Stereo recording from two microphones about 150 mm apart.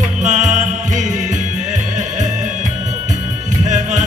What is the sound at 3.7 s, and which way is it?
Music, 55° right (ahead or behind).